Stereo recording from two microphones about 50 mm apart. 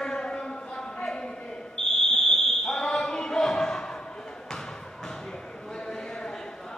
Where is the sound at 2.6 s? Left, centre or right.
Centre.